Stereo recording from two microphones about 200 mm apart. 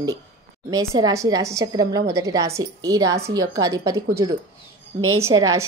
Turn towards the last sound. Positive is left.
turn(degrees=-15)  # may be behind; listen again after turning